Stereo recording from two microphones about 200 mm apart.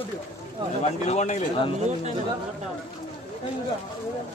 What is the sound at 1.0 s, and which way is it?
Speech, 35° left (ahead or behind).